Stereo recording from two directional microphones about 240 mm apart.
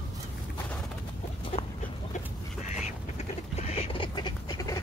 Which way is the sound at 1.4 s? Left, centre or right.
Left.